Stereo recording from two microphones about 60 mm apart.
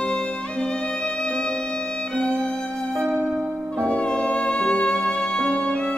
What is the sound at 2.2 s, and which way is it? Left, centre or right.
Music, centre.